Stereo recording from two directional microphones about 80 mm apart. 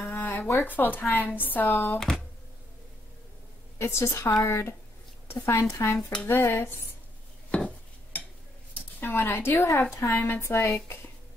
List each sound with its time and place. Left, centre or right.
0.1 s a sound: left
0.7 s speech: left
3.7 s a woman's voice: left
7.5 s dishes: centre
9.0 s a woman's voice: left